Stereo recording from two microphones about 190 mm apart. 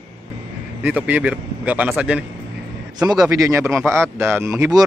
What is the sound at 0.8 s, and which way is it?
Speech, 10° right (ahead or behind).